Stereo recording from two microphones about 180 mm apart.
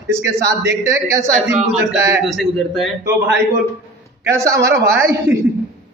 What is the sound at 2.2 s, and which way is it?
Speech, centre (ahead or behind).